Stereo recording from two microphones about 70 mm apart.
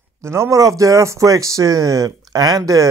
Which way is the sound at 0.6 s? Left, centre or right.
Right.